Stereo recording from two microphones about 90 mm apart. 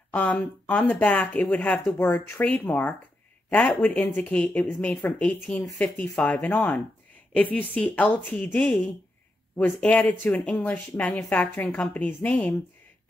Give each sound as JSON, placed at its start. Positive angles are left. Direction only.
{"t": 0.1, "sound": "speech", "side_deg": 20}